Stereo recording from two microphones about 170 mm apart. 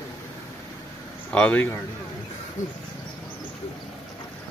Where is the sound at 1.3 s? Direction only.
10° left (ahead or behind).